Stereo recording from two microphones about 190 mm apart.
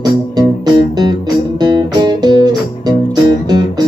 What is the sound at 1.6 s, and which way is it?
Music, 20° right (ahead or behind).